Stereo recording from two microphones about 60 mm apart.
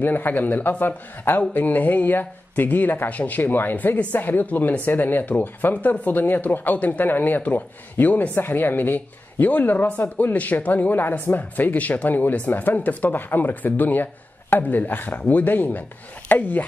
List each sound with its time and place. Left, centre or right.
0.0 s speech: left